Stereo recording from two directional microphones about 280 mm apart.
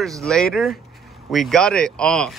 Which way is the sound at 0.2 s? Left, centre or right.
Centre.